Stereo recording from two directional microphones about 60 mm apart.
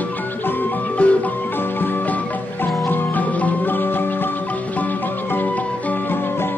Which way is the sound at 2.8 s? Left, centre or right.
Left.